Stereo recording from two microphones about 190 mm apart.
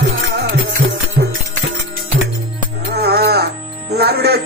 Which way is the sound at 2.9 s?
60° right (ahead or behind).